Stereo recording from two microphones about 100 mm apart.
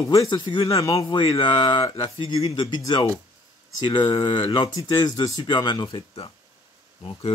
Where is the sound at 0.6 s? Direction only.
35° left (ahead or behind).